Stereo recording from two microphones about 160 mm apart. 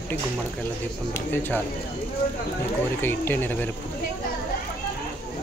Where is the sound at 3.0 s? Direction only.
15° left (ahead or behind).